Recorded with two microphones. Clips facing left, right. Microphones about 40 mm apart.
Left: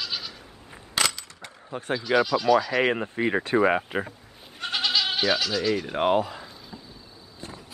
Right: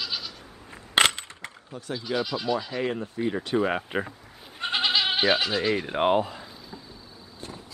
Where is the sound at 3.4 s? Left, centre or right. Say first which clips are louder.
Left 3 dB; left.